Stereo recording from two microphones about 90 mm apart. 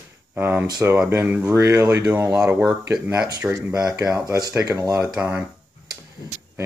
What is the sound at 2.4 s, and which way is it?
Speech, 5° right (ahead or behind).